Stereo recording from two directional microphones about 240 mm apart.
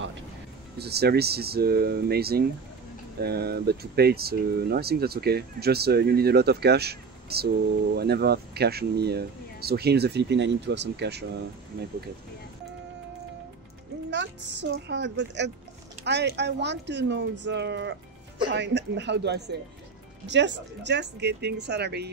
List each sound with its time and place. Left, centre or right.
0.7 s speech: right
14.1 s speech: right